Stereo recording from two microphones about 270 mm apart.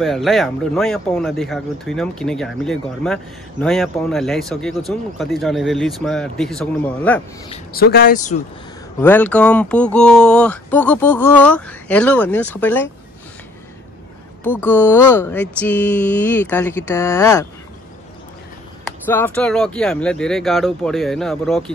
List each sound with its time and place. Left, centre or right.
0.0 s speech: centre
7.7 s speech: left
9.0 s speech: centre
14.6 s speech: centre
19.0 s speech: centre